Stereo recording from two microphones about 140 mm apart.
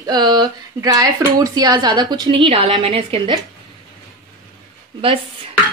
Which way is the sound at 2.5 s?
40° right (ahead or behind).